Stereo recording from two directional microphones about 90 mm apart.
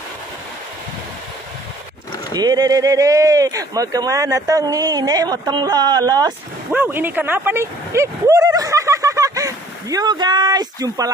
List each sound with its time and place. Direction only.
2.3 s speech: 45° right (ahead or behind)
6.7 s speech: 20° right (ahead or behind); by 11.1 s 45° right (ahead or behind)